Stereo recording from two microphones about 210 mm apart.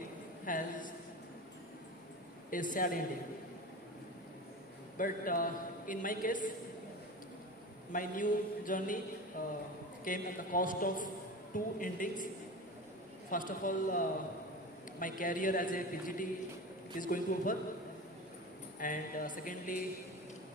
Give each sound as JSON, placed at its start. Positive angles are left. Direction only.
{"t": 0.5, "sound": "a sound", "side_deg": 40}
{"t": 2.5, "sound": "a man's voice", "side_deg": 40}
{"t": 4.9, "sound": "a man's voice", "side_deg": 40}
{"t": 7.9, "sound": "a man's voice", "side_deg": 40}
{"t": 13.3, "sound": "a man's voice", "side_deg": 40}
{"t": 18.8, "sound": "a man's voice", "side_deg": 40}